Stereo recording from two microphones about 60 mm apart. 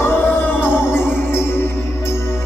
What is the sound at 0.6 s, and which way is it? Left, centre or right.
Music, left.